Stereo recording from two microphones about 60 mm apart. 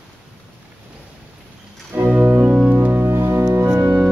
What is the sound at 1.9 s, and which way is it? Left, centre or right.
Music, right.